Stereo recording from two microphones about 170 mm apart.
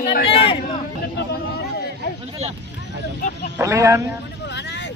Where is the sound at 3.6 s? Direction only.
20° right (ahead or behind).